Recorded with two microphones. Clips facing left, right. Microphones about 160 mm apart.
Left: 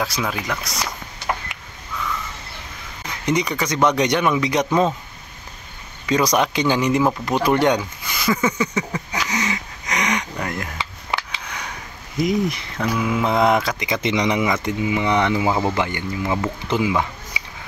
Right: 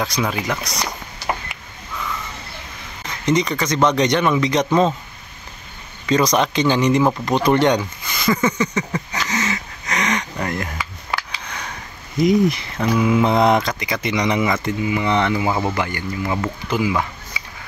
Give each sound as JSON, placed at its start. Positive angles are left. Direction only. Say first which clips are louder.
{"t": 0.0, "sound": "speech", "louder": "right 2 dB", "side_deg": 0}
{"t": 3.3, "sound": "speech", "louder": "right 2 dB", "side_deg": 10}
{"t": 6.0, "sound": "speech", "louder": "right 1 dB", "side_deg": 10}
{"t": 7.2, "sound": "a sound", "louder": "right 2 dB", "side_deg": 5}
{"t": 10.4, "sound": "speech", "louder": "right 3 dB", "side_deg": 0}
{"t": 10.8, "sound": "a sound", "louder": "even", "side_deg": 20}
{"t": 11.4, "sound": "a sound", "louder": "right 1 dB", "side_deg": 10}
{"t": 12.2, "sound": "speech", "louder": "right 5 dB", "side_deg": 0}
{"t": 13.7, "sound": "speech", "louder": "left 1 dB", "side_deg": 20}